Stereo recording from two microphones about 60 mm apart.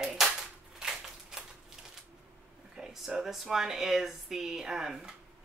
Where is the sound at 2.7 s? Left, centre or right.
Centre.